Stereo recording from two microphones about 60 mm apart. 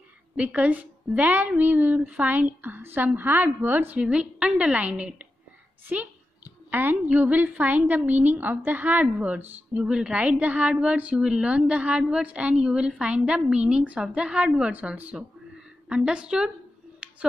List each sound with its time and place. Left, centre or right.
0.4 s a woman's voice: right
4.0 s a woman's voice: centre
17.0 s a sound: right